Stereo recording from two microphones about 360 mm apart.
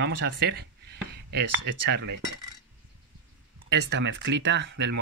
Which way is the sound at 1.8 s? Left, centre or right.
Right.